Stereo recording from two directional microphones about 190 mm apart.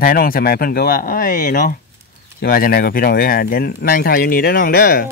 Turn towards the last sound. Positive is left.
turn(degrees=50)  # may be behind; listen again after turning